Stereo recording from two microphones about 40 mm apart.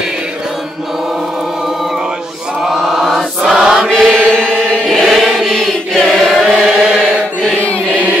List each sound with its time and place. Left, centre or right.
2.6 s mantra: centre
3.9 s chant: centre
4.3 s chant: left
4.8 s chant: centre
6.0 s choir: centre
6.4 s chant: right